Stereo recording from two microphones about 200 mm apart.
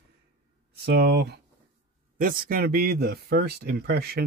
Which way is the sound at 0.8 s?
55° right (ahead or behind).